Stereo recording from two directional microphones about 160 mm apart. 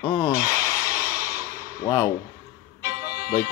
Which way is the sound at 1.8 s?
25° left (ahead or behind).